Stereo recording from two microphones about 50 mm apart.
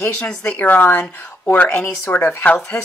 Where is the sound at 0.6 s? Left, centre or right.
Left.